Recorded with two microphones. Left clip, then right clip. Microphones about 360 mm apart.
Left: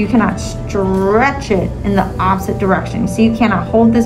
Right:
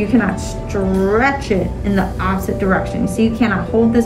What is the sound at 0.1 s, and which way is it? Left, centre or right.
A woman's voice, centre.